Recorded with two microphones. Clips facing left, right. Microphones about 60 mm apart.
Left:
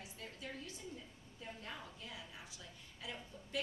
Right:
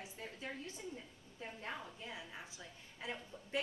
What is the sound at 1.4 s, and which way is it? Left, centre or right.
Speech, right.